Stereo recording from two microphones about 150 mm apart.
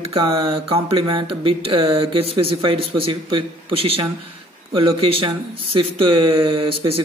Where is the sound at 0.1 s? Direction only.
40° right (ahead or behind).